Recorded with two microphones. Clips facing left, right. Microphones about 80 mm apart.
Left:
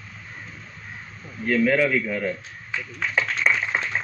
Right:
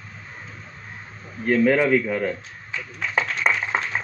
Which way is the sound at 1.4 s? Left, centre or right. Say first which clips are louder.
Right 2 dB; right.